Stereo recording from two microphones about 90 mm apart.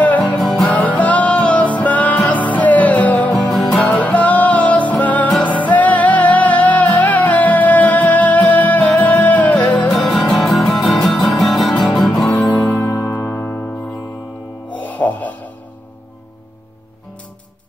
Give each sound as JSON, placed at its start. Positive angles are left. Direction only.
{"t": 0.7, "sound": "music", "side_deg": 15}
{"t": 3.3, "sound": "music", "side_deg": 5}
{"t": 3.8, "sound": "music", "side_deg": 15}
{"t": 9.8, "sound": "music", "side_deg": 5}
{"t": 12.3, "sound": "music", "side_deg": 15}